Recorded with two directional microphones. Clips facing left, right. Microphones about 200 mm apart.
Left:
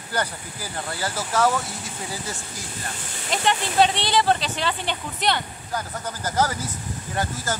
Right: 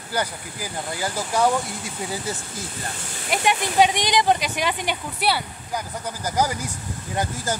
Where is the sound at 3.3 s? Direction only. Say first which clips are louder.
Right 1 dB; 10° right (ahead or behind).